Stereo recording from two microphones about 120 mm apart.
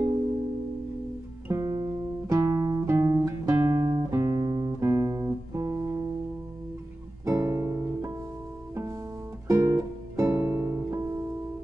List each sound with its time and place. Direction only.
1.5 s music: 25° right (ahead or behind)
7.2 s music: 25° right (ahead or behind)
9.5 s music: 25° right (ahead or behind)